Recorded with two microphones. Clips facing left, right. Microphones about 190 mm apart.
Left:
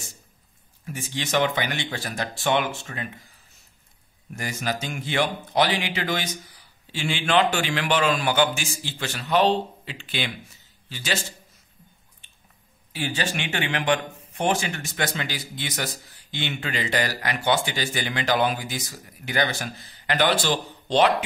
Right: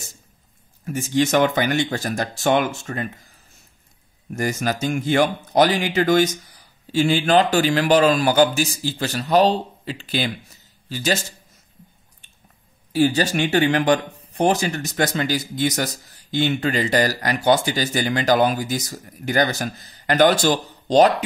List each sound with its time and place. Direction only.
0.8 s speech: 45° right (ahead or behind)
4.3 s a man's voice: 45° right (ahead or behind)
12.9 s speech: 40° right (ahead or behind)